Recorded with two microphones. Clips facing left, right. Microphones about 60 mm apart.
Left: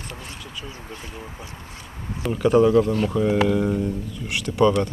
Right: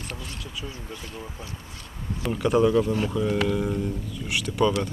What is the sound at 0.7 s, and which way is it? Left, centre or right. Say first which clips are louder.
Speech: left 1 dB; centre.